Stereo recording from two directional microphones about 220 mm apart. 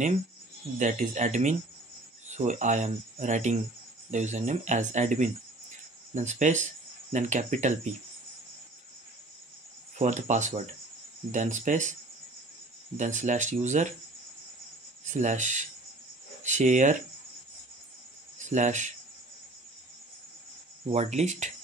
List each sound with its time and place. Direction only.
0.7 s speech: 35° right (ahead or behind)
9.9 s speech: 35° right (ahead or behind)
12.9 s speech: 35° right (ahead or behind)
15.0 s speech: 35° right (ahead or behind)
18.4 s speech: 35° right (ahead or behind)
20.9 s speech: 30° right (ahead or behind)